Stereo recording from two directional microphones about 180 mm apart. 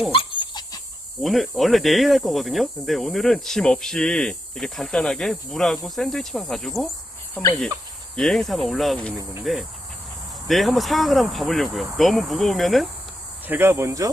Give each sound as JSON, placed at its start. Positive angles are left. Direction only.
{"t": 0.1, "sound": "dog", "side_deg": 30}
{"t": 1.2, "sound": "speech", "side_deg": 0}
{"t": 13.5, "sound": "speech", "side_deg": -15}